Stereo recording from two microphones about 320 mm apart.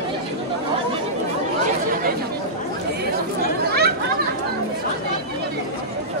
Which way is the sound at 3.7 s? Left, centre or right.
Right.